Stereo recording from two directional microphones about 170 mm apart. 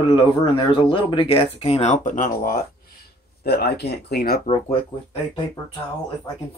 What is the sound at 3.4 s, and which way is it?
Speech, 70° left (ahead or behind).